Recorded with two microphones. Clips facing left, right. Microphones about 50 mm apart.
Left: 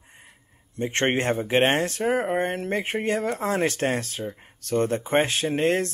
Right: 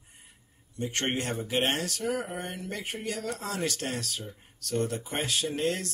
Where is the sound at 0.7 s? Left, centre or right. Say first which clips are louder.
Left 7 dB; left.